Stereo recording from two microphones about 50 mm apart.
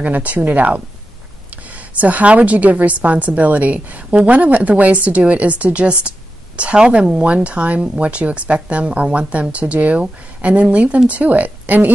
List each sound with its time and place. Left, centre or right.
0.0 s a woman's voice: right